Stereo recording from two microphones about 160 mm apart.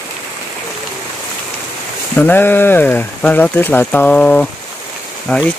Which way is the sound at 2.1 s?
10° left (ahead or behind).